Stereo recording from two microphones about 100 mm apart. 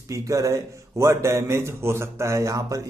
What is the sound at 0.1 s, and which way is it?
Speech, 30° right (ahead or behind).